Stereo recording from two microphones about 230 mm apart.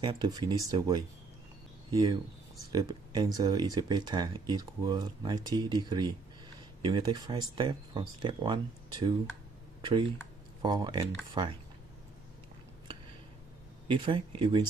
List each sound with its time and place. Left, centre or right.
0.0 s speech: centre
9.8 s a sound: centre
10.6 s speech: centre
13.8 s speech: right